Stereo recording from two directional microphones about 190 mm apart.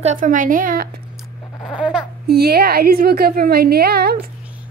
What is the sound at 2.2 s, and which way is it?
A woman's voice, 55° right (ahead or behind).